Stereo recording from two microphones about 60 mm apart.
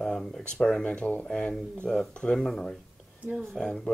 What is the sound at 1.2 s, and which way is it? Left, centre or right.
Speech, centre.